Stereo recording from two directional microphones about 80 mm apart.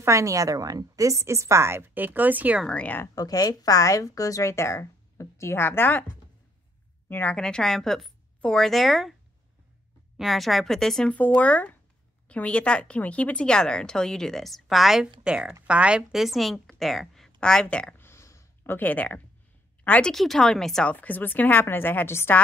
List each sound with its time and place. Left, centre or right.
0.0 s a woman's voice: right
2.6 s speech: centre
3.2 s speech: left
7.1 s a woman's voice: left
7.3 s a woman's voice: centre
10.1 s a woman's voice: centre
11.1 s a woman's voice: centre
17.9 s a sound: left
19.8 s speech: centre
20.1 s a woman's voice: centre
20.9 s speech: left